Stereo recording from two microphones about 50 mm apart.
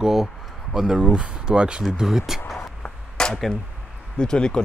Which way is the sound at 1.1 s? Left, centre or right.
Right.